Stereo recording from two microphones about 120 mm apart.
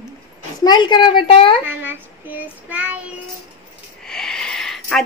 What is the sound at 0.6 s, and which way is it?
Speech, 40° left (ahead or behind).